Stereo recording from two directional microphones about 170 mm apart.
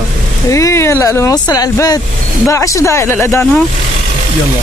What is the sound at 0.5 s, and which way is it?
Speech, 20° left (ahead or behind).